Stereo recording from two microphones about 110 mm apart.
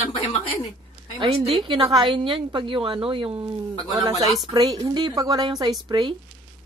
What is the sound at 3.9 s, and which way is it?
A woman's voice, 35° right (ahead or behind).